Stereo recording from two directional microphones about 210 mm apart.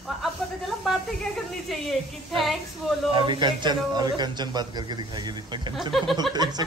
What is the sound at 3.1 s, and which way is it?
A man's voice, 20° right (ahead or behind).